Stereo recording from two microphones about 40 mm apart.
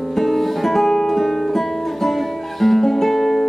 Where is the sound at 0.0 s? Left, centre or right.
Centre.